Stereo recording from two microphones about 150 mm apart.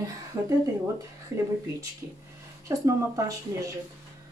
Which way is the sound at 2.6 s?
20° right (ahead or behind).